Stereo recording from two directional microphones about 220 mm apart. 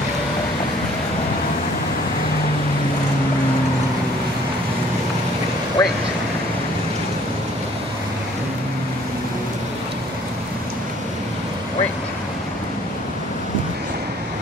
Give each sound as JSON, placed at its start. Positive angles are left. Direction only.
{"t": 5.8, "sound": "vehicle", "side_deg": 15}